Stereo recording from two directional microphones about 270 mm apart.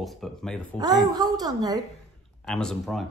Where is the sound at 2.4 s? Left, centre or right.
Centre.